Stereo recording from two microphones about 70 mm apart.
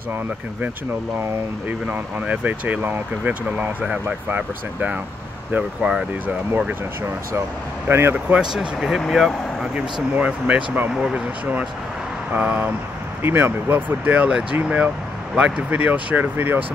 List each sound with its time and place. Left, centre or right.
1.7 s speech: right
7.9 s speech: right
8.4 s speech: centre
10.1 s speech: right
12.4 s speech: right
13.2 s speech: right